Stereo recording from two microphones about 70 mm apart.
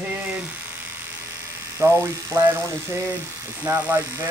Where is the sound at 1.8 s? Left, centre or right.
Right.